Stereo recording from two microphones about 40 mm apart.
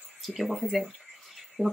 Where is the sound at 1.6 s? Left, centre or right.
Left.